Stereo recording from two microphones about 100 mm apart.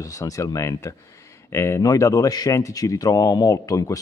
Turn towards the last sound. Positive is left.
turn(degrees=35)  # may be behind; listen again after turning